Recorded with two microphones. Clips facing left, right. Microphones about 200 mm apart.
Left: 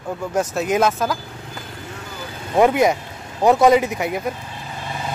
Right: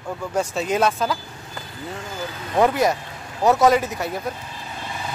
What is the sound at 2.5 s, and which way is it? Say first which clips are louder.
Speech: left 3 dB; 15° left (ahead or behind).